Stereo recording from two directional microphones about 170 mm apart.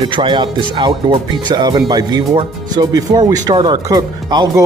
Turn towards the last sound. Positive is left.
turn(degrees=-25)  # may be behind; listen again after turning